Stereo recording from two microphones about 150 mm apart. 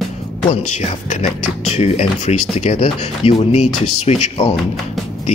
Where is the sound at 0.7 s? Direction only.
50° left (ahead or behind).